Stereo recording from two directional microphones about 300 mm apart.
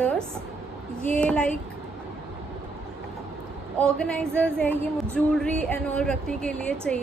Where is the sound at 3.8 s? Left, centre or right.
Centre.